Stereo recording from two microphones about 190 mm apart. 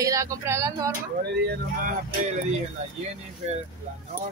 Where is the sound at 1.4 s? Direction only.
55° right (ahead or behind).